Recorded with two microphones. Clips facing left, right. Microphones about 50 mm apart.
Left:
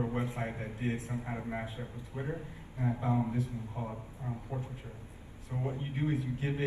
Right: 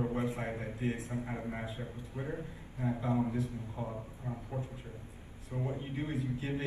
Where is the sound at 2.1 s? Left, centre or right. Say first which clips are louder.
Left 1 dB; left.